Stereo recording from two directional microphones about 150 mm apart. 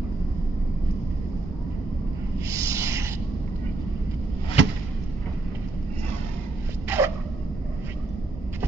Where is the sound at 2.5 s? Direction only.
20° right (ahead or behind).